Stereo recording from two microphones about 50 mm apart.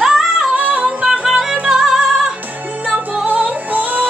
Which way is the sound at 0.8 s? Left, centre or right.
Centre.